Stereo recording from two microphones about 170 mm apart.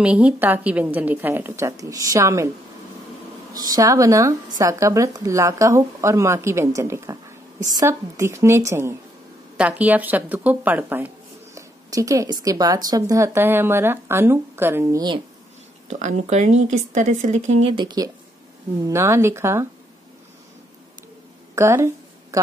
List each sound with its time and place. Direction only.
0.0 s a woman's voice: 5° right (ahead or behind)
3.5 s a woman's voice: 20° right (ahead or behind)
15.9 s a woman's voice: 45° right (ahead or behind); by 19.7 s 15° right (ahead or behind)
21.5 s a sound: 15° right (ahead or behind)